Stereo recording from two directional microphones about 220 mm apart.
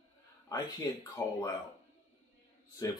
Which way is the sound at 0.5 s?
15° left (ahead or behind).